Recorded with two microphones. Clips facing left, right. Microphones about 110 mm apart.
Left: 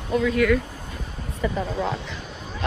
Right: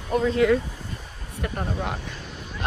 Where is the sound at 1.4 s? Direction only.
75° left (ahead or behind).